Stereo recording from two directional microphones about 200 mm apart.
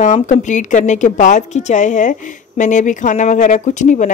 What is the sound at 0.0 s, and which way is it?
A woman's voice, 35° left (ahead or behind).